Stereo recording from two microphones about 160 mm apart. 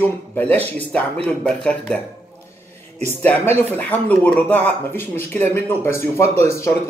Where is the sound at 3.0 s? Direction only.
10° left (ahead or behind).